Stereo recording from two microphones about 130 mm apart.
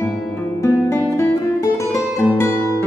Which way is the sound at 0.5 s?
20° left (ahead or behind).